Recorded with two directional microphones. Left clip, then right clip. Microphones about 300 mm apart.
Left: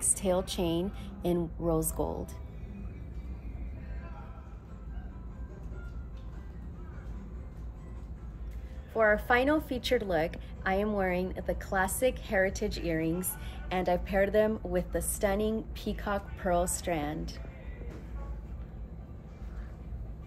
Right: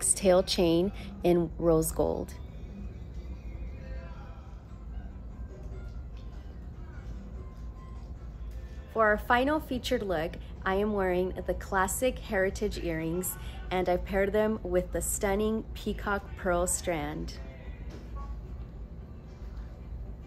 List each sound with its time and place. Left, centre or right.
0.0 s a woman's voice: right
8.9 s a woman's voice: centre